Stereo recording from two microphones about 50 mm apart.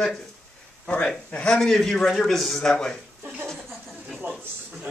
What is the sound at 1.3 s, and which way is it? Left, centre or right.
Speech, left.